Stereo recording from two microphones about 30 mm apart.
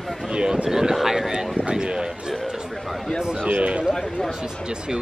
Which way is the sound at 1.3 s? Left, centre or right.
Right.